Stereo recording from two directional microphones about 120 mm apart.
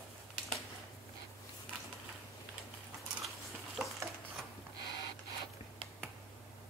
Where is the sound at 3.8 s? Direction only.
5° right (ahead or behind).